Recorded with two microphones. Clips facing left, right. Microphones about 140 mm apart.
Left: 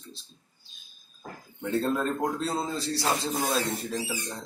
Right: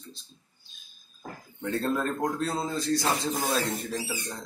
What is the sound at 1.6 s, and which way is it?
Speech, 15° left (ahead or behind).